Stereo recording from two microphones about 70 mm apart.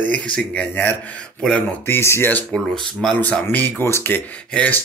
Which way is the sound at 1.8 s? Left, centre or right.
Left.